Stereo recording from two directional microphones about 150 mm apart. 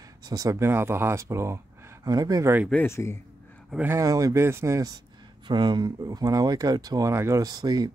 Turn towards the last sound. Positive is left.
turn(degrees=-25)  # may be behind; listen again after turning